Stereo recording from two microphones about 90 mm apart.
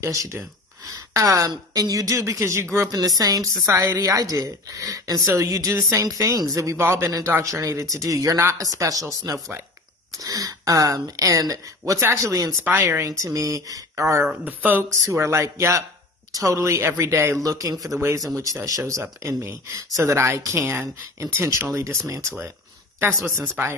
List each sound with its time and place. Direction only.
0.0 s speech: 35° right (ahead or behind)
3.2 s a woman's voice: 45° right (ahead or behind)
12.6 s speech: 30° right (ahead or behind)
14.4 s speech: 20° right (ahead or behind)
14.9 s speech: 35° right (ahead or behind)
17.9 s speech: 30° right (ahead or behind)
18.2 s a woman's voice: 40° right (ahead or behind)